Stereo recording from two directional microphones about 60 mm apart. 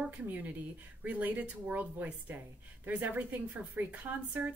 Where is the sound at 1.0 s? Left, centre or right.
Right.